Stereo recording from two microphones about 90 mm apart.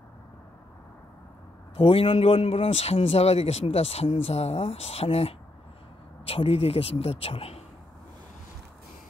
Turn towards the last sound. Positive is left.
turn(degrees=90)